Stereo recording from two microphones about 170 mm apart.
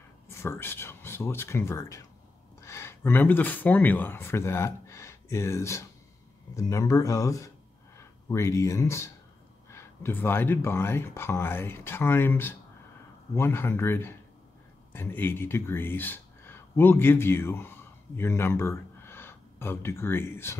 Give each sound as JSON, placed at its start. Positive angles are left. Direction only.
{"t": 0.3, "sound": "speech", "side_deg": 15}